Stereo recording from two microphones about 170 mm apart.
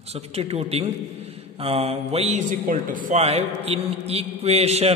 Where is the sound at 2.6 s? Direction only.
50° right (ahead or behind).